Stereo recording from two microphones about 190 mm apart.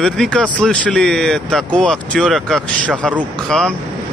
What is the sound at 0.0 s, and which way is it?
Speech, 5° left (ahead or behind).